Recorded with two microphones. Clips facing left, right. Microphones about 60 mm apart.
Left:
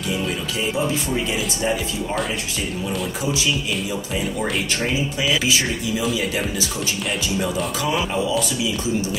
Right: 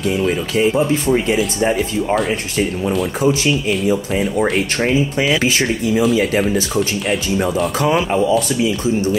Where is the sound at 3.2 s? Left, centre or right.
Right.